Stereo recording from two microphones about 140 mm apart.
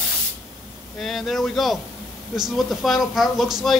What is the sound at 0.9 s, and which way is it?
Speech, centre (ahead or behind).